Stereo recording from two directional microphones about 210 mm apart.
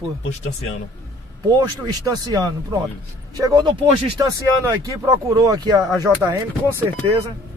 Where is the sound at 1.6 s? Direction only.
15° right (ahead or behind).